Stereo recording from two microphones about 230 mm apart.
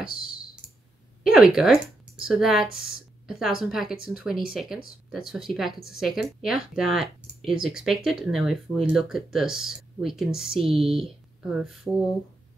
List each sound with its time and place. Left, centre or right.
0.0 s clicking: left
1.2 s speech: centre